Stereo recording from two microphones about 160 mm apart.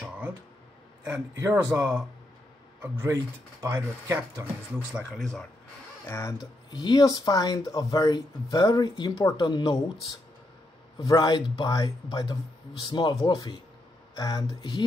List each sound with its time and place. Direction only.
1.0 s speech: 15° right (ahead or behind)
5.2 s speech: 5° left (ahead or behind)
6.0 s speech: 20° left (ahead or behind)
11.1 s speech: 25° left (ahead or behind)